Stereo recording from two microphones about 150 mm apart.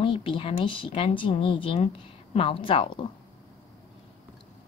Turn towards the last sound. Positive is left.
turn(degrees=35)  # may be behind; listen again after turning